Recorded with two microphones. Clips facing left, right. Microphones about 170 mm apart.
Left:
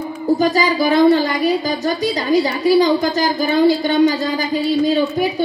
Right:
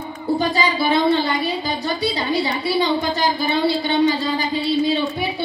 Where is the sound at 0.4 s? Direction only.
40° left (ahead or behind).